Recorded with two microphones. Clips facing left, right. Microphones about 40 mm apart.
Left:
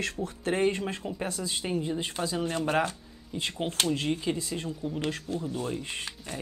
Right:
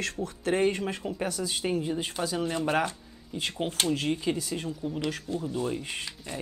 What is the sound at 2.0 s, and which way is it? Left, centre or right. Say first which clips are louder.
Speech: right 1 dB; left.